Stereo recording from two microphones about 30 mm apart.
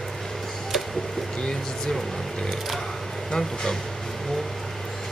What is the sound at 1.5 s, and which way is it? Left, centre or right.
Vehicle, centre.